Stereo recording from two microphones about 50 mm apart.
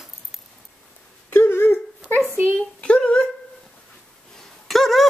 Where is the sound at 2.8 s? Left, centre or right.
Left.